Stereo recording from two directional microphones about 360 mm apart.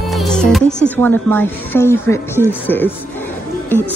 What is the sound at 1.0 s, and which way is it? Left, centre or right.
Speech, centre.